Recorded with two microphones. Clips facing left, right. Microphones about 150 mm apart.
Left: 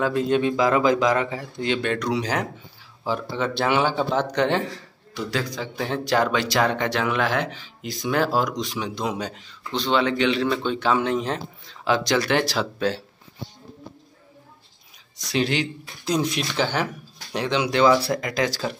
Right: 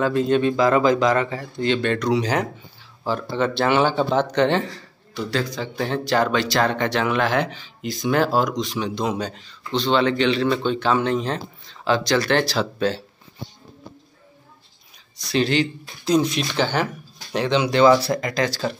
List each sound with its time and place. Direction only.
0.0 s speech: 5° left (ahead or behind)
15.3 s speech: 10° left (ahead or behind)